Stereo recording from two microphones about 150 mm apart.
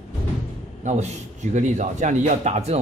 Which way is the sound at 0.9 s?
50° right (ahead or behind).